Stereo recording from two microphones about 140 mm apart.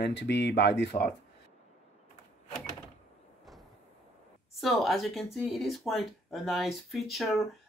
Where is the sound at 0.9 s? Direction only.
45° left (ahead or behind).